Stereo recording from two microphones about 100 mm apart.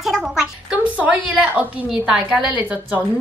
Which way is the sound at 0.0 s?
5° right (ahead or behind).